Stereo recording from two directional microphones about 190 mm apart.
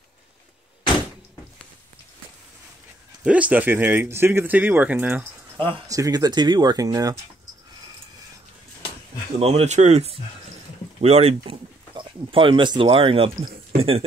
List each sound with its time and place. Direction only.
3.3 s speech: 5° right (ahead or behind)
5.6 s speech: 20° right (ahead or behind)
9.4 s speech: 35° right (ahead or behind)